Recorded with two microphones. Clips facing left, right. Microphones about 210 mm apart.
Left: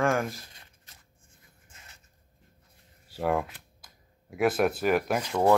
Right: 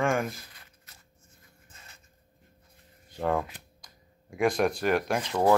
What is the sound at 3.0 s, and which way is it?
Speech, 10° left (ahead or behind).